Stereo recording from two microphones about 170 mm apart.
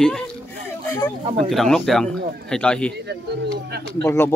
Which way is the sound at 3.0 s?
75° right (ahead or behind).